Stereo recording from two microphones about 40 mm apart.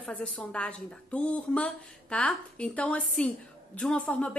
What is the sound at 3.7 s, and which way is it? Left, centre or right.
Speech, left.